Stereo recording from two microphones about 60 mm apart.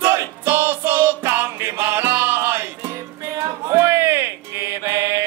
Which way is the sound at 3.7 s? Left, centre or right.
Right.